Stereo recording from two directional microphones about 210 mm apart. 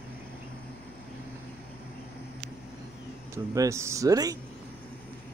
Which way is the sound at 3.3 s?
15° right (ahead or behind).